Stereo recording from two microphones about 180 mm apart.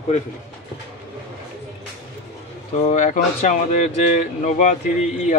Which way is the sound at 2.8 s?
40° left (ahead or behind).